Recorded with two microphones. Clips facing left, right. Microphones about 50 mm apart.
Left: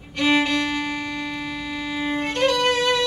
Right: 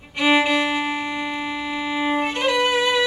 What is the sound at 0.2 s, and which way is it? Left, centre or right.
Violin, centre.